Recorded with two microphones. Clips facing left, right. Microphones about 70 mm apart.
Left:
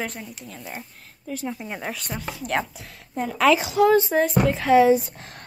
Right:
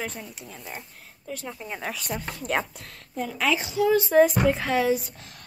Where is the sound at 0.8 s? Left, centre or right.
Centre.